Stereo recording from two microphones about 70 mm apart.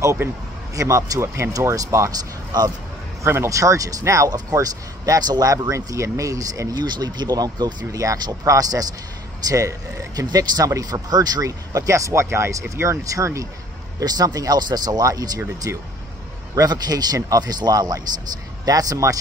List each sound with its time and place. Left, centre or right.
0.7 s speech: right
2.0 s speech: right
4.3 s speech: right
6.7 s speech: right
10.2 s speech: right
13.9 s speech: right